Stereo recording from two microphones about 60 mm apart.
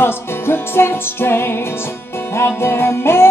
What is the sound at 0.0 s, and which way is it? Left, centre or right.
Music, left.